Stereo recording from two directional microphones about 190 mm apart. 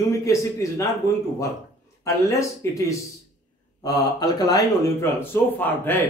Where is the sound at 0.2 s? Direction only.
15° left (ahead or behind).